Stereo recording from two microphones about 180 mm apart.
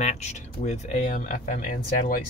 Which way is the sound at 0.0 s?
40° left (ahead or behind).